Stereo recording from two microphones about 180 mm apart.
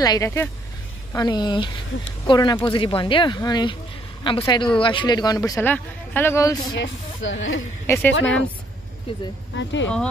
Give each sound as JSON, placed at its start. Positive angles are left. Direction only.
{"t": 0.0, "sound": "a woman's voice", "side_deg": 20}
{"t": 5.6, "sound": "speech", "side_deg": 10}
{"t": 6.8, "sound": "speech", "side_deg": 90}
{"t": 7.8, "sound": "a woman's voice", "side_deg": 10}
{"t": 9.6, "sound": "speech", "side_deg": 90}